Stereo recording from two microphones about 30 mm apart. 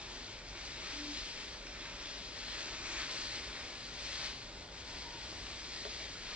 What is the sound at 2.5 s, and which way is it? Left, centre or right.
Vehicle, right.